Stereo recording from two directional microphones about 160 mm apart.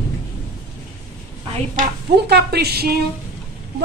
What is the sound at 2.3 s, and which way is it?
Speech, 90° right.